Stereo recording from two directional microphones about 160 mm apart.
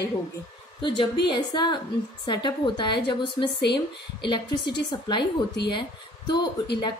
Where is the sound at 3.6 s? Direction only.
90° left.